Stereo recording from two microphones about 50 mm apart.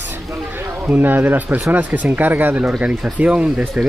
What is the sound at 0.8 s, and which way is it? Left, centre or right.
Speech, right.